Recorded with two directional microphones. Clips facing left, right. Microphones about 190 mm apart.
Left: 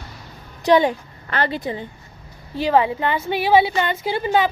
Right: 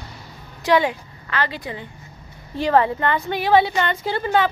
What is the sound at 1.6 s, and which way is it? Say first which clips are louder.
Speech: left 5 dB; 30° left (ahead or behind).